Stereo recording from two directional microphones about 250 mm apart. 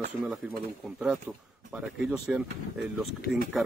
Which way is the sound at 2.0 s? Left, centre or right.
Centre.